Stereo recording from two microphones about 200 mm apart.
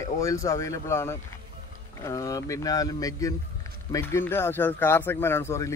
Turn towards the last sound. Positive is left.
turn(degrees=15)  # may be behind; listen again after turning